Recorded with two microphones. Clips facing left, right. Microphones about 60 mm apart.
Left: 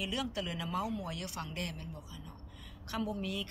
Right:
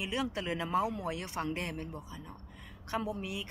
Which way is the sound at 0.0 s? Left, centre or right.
Right.